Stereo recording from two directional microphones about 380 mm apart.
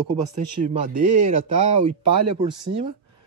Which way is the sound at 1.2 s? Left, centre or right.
Centre.